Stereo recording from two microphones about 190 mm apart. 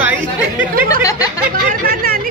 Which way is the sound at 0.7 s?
50° right (ahead or behind).